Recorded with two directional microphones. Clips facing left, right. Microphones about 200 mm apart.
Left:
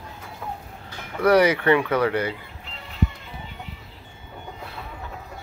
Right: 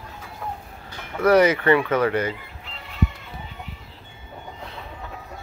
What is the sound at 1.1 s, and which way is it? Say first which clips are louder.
Speech: right 1 dB; 10° left (ahead or behind).